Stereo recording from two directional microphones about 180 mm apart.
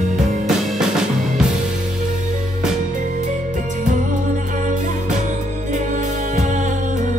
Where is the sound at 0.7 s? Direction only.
Centre (ahead or behind).